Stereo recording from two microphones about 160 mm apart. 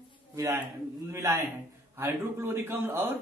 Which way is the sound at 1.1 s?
15° right (ahead or behind).